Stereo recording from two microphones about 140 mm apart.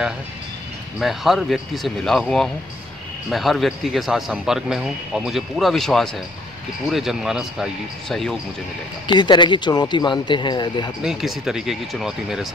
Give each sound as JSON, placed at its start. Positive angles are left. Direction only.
{"t": 0.9, "sound": "speech", "side_deg": 0}
{"t": 9.0, "sound": "speech", "side_deg": 35}
{"t": 11.1, "sound": "speech", "side_deg": 0}